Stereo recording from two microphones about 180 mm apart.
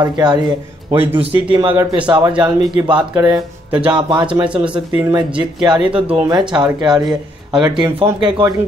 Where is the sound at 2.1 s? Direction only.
20° right (ahead or behind).